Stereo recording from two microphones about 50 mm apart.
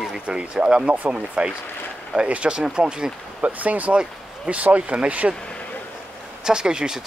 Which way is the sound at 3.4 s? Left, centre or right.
Right.